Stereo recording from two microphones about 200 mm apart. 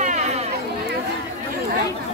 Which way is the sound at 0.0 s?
35° right (ahead or behind).